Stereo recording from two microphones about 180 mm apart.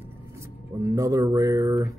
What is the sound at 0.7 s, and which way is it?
Speech, 15° right (ahead or behind).